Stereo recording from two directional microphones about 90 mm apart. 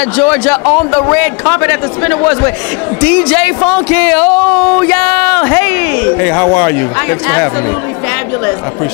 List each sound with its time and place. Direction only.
0.2 s speech: 20° left (ahead or behind)